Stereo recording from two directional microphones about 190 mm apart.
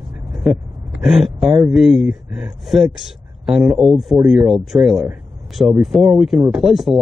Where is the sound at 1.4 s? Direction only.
20° right (ahead or behind).